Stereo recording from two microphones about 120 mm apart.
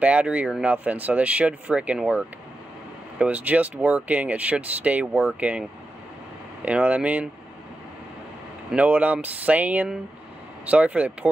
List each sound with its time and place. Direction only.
0.0 s speech: 10° right (ahead or behind)
8.7 s speech: 15° right (ahead or behind)